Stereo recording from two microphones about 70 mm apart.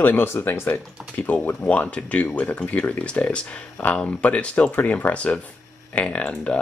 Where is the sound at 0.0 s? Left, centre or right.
Left.